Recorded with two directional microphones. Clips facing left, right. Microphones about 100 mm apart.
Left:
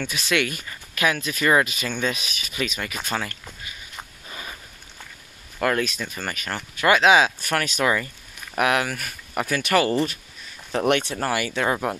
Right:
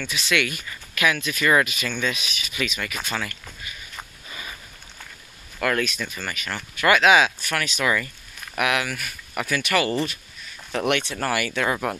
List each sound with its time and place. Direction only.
0.0 s speech: 45° left (ahead or behind)
3.4 s a sound: 15° left (ahead or behind)
4.3 s a sound: 35° left (ahead or behind)
5.6 s speech: 30° left (ahead or behind)
6.0 s speech: 40° left (ahead or behind)
6.5 s speech: 30° left (ahead or behind)
7.3 s speech: 45° left (ahead or behind)
11.1 s speech: 25° left (ahead or behind)